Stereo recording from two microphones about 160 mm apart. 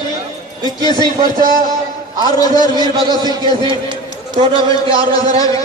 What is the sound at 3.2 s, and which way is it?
A man's voice, 30° right (ahead or behind).